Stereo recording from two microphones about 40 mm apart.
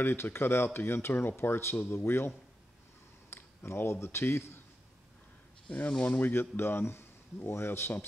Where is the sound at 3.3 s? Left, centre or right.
Left.